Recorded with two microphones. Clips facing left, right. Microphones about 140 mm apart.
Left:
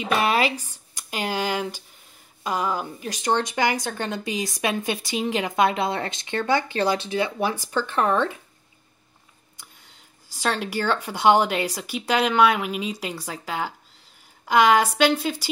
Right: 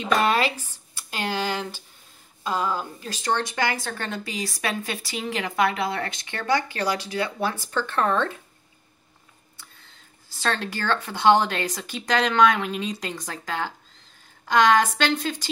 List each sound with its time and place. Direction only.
0.0 s speech: 10° left (ahead or behind)
9.6 s speech: 15° left (ahead or behind)